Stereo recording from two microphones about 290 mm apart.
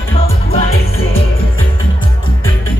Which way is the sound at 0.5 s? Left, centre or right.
Left.